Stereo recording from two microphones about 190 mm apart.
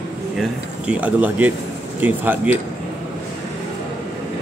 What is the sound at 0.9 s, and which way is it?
A man's voice, 5° right (ahead or behind).